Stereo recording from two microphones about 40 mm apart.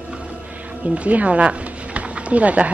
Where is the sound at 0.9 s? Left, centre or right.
Right.